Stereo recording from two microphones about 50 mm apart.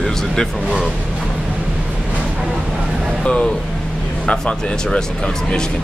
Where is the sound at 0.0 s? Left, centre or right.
Centre.